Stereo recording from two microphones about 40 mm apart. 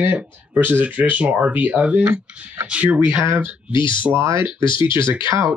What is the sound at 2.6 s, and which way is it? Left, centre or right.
Speech, right.